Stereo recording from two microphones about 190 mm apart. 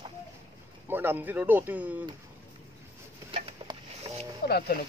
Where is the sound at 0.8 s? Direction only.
10° right (ahead or behind).